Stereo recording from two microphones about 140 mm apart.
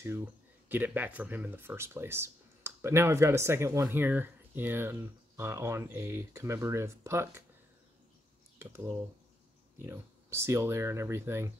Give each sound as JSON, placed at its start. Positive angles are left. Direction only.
{"t": 0.7, "sound": "speech", "side_deg": -15}
{"t": 9.8, "sound": "speech", "side_deg": -20}